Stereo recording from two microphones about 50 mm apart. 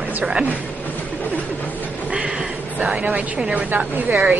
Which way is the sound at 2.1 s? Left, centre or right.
Centre.